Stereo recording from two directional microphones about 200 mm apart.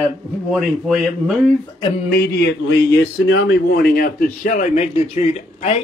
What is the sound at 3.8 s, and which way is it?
A man's voice, 45° left (ahead or behind).